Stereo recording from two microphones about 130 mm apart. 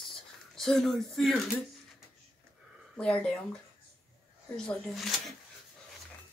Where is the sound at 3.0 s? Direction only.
5° left (ahead or behind).